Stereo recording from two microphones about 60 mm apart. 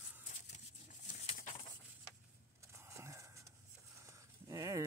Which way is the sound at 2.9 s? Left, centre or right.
Right.